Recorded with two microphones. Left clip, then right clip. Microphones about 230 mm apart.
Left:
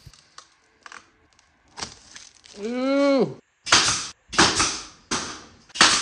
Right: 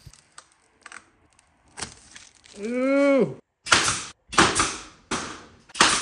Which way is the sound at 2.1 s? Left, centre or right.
Left.